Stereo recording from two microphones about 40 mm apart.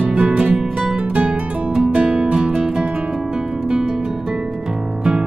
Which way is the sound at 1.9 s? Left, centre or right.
Right.